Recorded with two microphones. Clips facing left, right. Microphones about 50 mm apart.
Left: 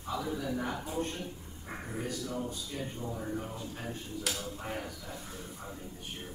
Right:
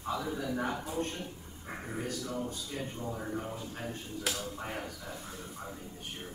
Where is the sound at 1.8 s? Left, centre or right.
Centre.